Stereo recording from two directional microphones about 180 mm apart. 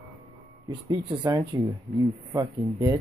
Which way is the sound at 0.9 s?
25° right (ahead or behind).